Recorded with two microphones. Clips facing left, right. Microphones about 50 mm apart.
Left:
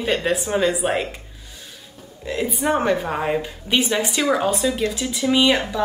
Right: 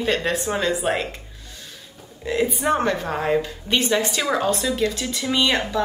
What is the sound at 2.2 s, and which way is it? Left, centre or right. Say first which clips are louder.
Speech: right 1 dB; centre.